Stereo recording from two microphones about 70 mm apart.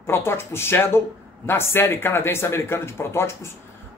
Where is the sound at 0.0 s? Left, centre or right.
Left.